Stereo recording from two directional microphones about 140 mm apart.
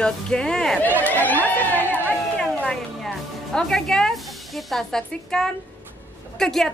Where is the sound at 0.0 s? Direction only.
5° left (ahead or behind).